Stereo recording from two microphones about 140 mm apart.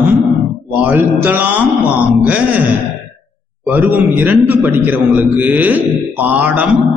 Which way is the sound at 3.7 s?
10° right (ahead or behind).